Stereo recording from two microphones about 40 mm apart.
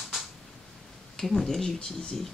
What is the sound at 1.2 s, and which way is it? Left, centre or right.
Speech, centre.